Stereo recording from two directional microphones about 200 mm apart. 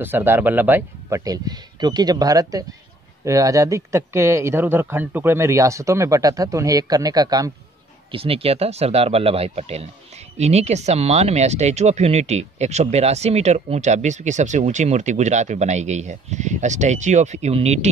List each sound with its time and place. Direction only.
0.0 s speech: 10° right (ahead or behind)
8.1 s speech: 30° right (ahead or behind)